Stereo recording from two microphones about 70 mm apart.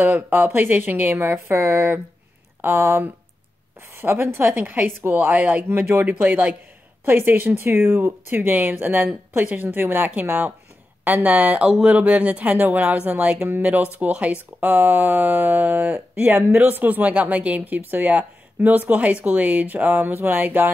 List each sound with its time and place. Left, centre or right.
0.0 s speech: right